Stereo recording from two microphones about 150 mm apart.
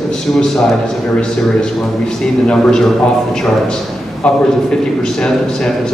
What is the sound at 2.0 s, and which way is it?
Speech, 5° left (ahead or behind).